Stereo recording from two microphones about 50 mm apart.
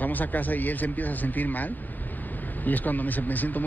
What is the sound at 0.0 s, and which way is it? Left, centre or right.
Speech, left.